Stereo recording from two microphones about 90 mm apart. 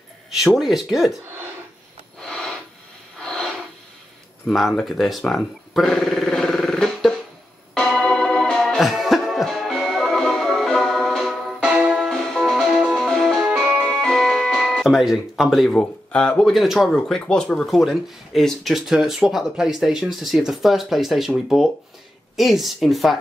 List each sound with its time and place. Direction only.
0.3 s speech: 5° right (ahead or behind)
2.1 s a sound: 5° left (ahead or behind)
3.2 s filing: 5° left (ahead or behind)
4.5 s speech: 5° left (ahead or behind)
7.7 s music: 5° left (ahead or behind)
11.7 s music: 10° right (ahead or behind)
12.0 s music: 5° left (ahead or behind)
13.4 s music: 5° right (ahead or behind)
13.8 s music: 5° left (ahead or behind)
15.7 s speech: 10° left (ahead or behind)
22.4 s speech: centre (ahead or behind)